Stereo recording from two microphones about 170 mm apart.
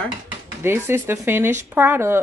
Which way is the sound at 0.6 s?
15° right (ahead or behind).